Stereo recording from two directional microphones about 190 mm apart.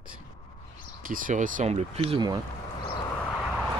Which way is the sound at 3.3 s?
5° right (ahead or behind).